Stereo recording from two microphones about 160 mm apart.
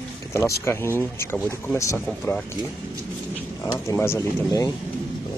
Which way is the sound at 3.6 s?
15° left (ahead or behind).